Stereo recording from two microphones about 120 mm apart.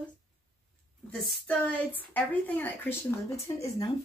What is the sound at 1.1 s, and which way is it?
Speech, 10° left (ahead or behind).